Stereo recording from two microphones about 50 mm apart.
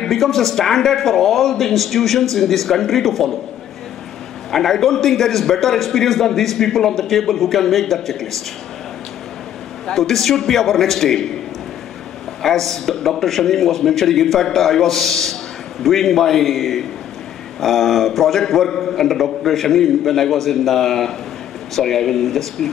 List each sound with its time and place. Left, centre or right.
0.0 s a man's voice: centre
4.5 s a man's voice: centre
9.9 s a man's voice: centre
12.4 s a man's voice: centre